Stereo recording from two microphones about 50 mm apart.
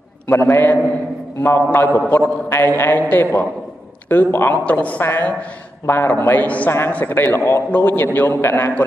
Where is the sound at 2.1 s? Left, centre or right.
Left.